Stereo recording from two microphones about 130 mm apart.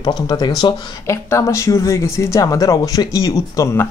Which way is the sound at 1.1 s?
20° left (ahead or behind).